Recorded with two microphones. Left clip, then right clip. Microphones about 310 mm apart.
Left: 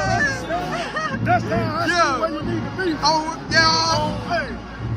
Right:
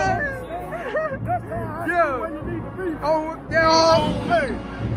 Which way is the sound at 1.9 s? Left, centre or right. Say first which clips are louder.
Left 1 dB; centre.